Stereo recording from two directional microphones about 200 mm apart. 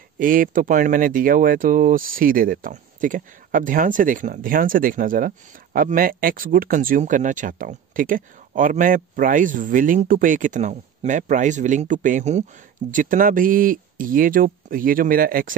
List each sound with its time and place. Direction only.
0.2 s speech: 45° right (ahead or behind)